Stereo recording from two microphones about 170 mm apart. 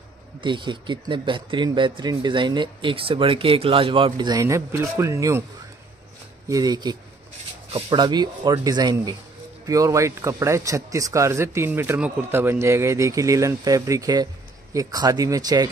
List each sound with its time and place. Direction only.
0.4 s speech: 30° right (ahead or behind)
6.5 s speech: 25° right (ahead or behind)